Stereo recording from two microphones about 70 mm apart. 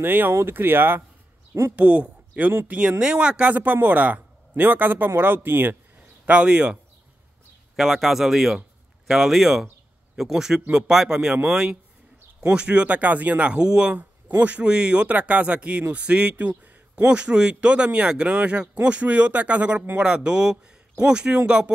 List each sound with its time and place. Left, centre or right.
0.0 s speech: right
1.8 s speech: centre
6.2 s a man's voice: centre